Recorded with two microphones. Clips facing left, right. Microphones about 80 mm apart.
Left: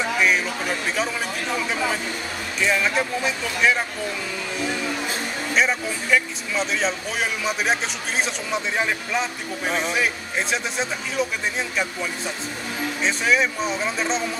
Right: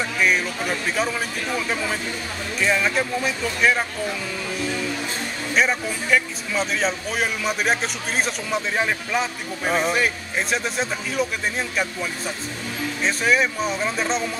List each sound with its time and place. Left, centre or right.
0.0 s music: centre
2.6 s speech: centre
5.5 s speech: centre